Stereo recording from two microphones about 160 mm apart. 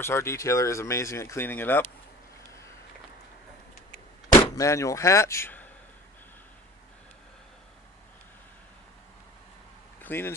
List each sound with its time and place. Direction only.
0.0 s speech: 15° left (ahead or behind)
4.4 s speech: 20° left (ahead or behind)
10.0 s speech: 15° left (ahead or behind)